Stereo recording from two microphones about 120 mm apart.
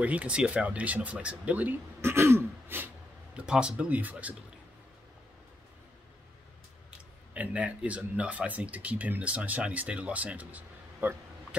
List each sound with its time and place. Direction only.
0.0 s speech: 10° right (ahead or behind)
3.3 s speech: 10° right (ahead or behind)
7.3 s speech: 10° right (ahead or behind)